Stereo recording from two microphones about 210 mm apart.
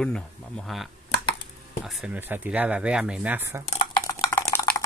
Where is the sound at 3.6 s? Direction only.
40° left (ahead or behind).